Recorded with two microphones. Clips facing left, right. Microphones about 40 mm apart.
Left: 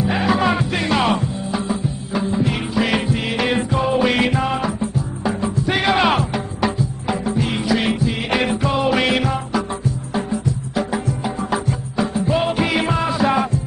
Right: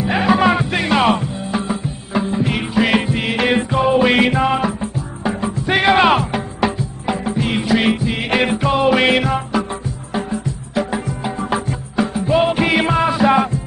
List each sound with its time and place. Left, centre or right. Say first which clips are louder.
0.0 s music: right 3 dB; right